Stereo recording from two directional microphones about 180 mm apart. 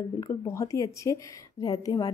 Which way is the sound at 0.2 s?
15° left (ahead or behind).